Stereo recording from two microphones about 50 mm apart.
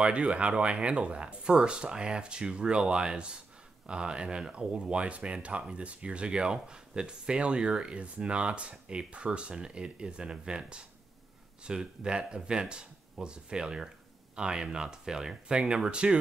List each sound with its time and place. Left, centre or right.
0.0 s speech: right